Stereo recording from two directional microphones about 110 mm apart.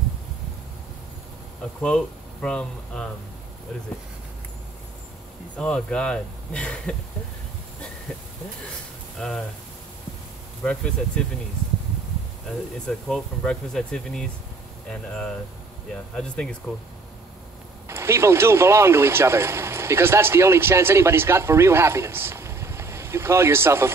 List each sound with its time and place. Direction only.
2.4 s speech: 5° left (ahead or behind)
5.6 s speech: 10° left (ahead or behind)
9.2 s speech: 10° left (ahead or behind)
10.6 s speech: 10° left (ahead or behind)
12.8 s speech: 10° left (ahead or behind)
17.8 s speech: 25° right (ahead or behind)